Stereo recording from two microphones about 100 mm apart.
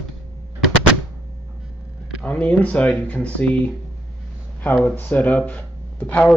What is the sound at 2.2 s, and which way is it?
Speech, 15° left (ahead or behind).